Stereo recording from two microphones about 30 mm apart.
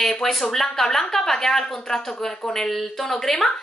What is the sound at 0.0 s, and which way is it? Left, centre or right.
A woman's voice, centre.